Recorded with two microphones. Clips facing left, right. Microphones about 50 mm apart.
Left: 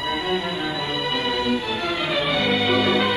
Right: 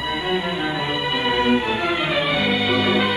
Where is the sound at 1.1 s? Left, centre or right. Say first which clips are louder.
Right 5 dB; right.